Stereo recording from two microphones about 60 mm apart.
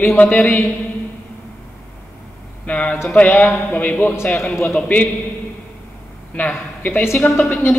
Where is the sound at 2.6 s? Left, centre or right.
Left.